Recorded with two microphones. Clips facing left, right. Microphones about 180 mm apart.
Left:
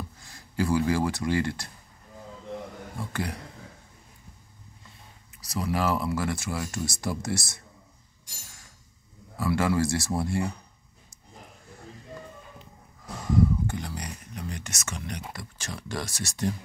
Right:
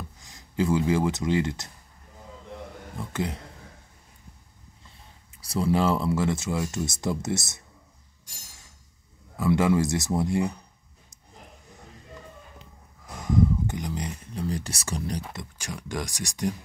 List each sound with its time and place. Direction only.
0.2 s speech: 20° right (ahead or behind)
3.0 s speech: 20° right (ahead or behind)
5.4 s speech: 30° right (ahead or behind)
9.4 s speech: 20° right (ahead or behind)
13.7 s a sound: 20° right (ahead or behind)
14.5 s speech: 35° right (ahead or behind)
15.3 s speech: 15° right (ahead or behind)